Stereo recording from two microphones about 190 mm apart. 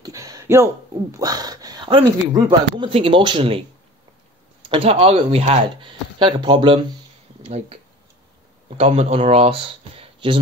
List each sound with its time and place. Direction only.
0.0 s a sound: 20° right (ahead or behind)
1.1 s speech: 20° right (ahead or behind)
4.6 s speech: 30° right (ahead or behind)